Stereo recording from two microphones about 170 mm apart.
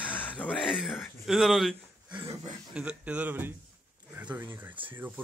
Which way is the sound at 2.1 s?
30° right (ahead or behind).